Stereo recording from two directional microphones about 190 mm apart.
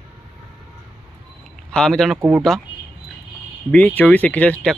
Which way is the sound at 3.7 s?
10° left (ahead or behind).